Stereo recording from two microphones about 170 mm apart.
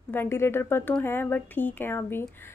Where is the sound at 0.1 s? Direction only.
15° left (ahead or behind).